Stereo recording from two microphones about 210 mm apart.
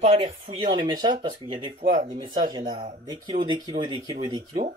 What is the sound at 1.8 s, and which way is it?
Speech, 35° right (ahead or behind).